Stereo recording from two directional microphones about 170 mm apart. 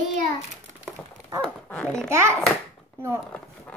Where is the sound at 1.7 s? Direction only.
5° left (ahead or behind).